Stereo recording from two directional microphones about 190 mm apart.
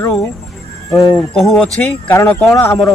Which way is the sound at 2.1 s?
15° left (ahead or behind).